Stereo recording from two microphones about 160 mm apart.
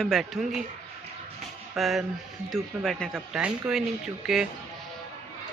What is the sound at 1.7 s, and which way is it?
Speech, centre (ahead or behind).